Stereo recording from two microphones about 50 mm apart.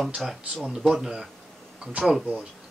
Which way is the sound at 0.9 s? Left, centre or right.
Centre.